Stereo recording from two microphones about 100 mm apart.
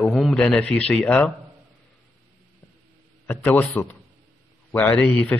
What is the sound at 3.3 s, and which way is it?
A man's voice, 20° left (ahead or behind).